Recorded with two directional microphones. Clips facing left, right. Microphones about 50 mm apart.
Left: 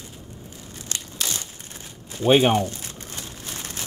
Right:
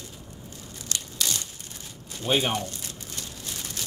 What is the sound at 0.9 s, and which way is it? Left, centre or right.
Crushing, left.